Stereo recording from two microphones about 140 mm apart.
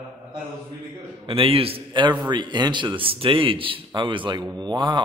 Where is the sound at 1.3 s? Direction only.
40° right (ahead or behind).